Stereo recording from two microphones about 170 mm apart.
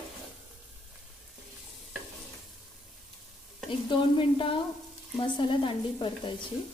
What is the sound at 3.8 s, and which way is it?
Speech, 30° left (ahead or behind).